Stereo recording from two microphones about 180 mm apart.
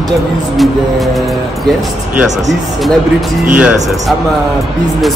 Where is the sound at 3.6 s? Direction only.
5° right (ahead or behind).